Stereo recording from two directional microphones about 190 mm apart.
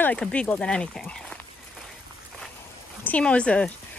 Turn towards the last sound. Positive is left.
turn(degrees=5)  # may be behind; listen again after turning